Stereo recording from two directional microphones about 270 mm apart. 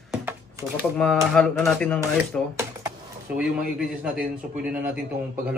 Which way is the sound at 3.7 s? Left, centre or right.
Centre.